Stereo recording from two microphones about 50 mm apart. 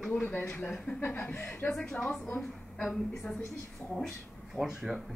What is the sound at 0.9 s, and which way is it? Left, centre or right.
Speech, left.